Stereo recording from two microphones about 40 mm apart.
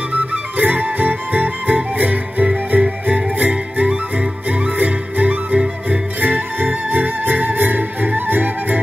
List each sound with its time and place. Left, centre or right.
0.1 s music: right
3.8 s music: right
4.5 s music: right